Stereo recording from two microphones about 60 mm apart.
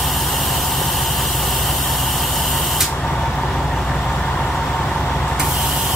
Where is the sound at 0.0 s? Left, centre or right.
Centre.